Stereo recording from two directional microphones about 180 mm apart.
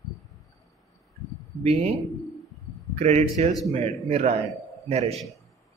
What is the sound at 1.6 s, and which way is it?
Speech, 35° right (ahead or behind).